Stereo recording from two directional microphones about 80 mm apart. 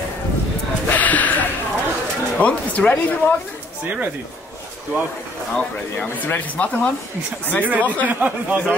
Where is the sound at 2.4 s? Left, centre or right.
Centre.